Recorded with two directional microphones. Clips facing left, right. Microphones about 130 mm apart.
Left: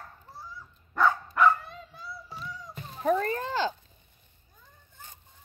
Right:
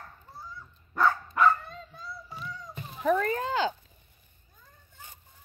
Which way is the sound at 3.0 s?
35° left (ahead or behind).